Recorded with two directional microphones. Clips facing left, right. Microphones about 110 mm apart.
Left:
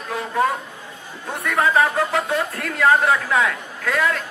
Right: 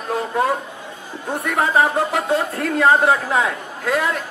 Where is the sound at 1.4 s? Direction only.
25° right (ahead or behind).